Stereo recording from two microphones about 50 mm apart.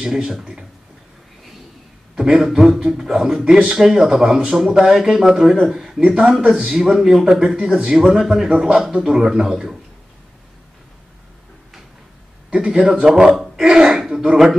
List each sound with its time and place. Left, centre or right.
0.0 s a man's voice: centre
2.1 s a man's voice: centre
6.4 s a man's voice: right
6.7 s a man's voice: centre
12.4 s a sound: centre
12.9 s a man's voice: centre
13.3 s speech: centre